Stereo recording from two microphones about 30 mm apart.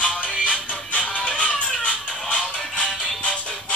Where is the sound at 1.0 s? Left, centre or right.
Left.